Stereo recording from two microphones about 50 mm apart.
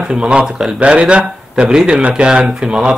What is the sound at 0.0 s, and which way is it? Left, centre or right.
Speech, centre.